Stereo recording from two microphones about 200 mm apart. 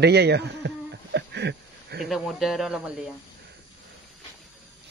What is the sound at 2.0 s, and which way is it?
Speech, centre (ahead or behind).